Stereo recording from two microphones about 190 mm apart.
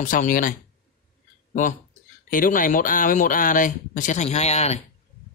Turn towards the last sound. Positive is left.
turn(degrees=35)  # may be behind; listen again after turning